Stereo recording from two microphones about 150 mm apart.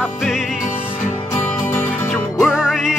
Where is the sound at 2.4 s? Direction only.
5° right (ahead or behind).